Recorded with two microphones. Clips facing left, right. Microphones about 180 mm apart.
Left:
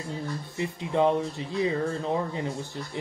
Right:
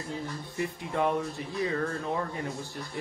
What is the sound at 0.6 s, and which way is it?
Speech, 20° left (ahead or behind).